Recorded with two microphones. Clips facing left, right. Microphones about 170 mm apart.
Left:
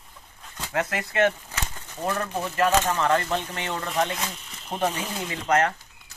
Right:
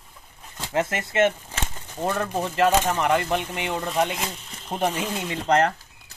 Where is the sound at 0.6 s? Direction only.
25° right (ahead or behind).